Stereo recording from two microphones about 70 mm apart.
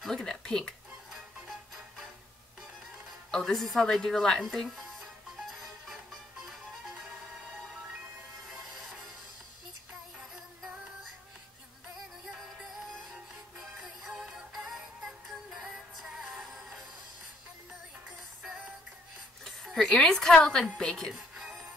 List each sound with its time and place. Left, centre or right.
0.0 s speech: centre
3.3 s speech: centre
13.7 s music: centre
16.2 s music: centre
19.4 s a sound: centre
20.7 s a woman's voice: centre
21.1 s music: centre